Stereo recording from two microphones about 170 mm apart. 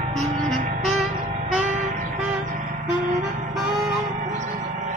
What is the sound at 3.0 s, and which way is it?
Music, 45° right (ahead or behind).